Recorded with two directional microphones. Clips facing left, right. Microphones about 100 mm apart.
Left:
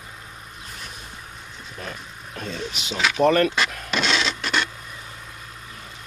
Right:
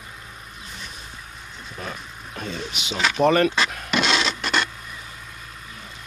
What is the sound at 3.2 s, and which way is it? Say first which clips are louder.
Speech: even; 10° right (ahead or behind).